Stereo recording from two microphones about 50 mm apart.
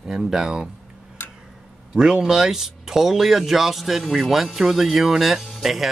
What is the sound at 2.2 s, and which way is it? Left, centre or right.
Speech, centre.